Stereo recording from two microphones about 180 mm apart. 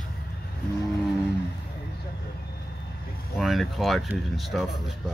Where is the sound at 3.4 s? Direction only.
Centre (ahead or behind).